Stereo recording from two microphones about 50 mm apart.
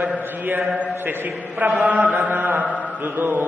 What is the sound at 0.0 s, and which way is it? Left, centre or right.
Mantra, right.